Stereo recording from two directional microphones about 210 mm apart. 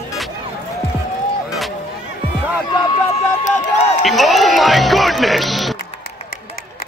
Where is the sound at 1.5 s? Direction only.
Centre (ahead or behind).